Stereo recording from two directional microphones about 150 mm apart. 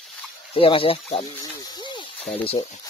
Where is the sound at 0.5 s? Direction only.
35° left (ahead or behind).